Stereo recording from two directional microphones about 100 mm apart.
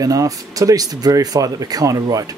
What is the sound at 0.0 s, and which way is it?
Speech, 35° right (ahead or behind).